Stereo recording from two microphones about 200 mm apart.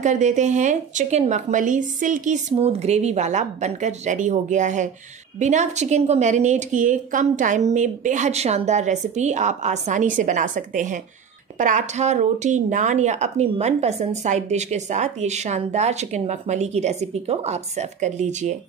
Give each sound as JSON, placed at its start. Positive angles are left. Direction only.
{"t": 0.0, "sound": "speech", "side_deg": -35}